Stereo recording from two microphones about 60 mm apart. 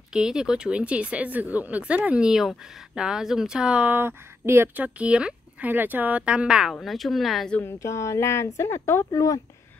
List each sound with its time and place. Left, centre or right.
0.1 s speech: centre
2.2 s speech: centre
3.9 s speech: right
4.7 s speech: right
5.7 s speech: right; by 6.7 s centre
6.7 s speech: centre
7.6 s speech: left